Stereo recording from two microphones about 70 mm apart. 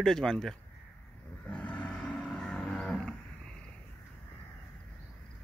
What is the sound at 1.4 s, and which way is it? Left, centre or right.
Livestock, centre.